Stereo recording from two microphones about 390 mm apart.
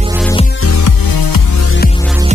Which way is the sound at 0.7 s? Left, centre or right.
Left.